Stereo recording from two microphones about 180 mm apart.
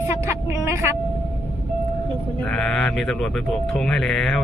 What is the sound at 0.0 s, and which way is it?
Vehicle, 15° right (ahead or behind).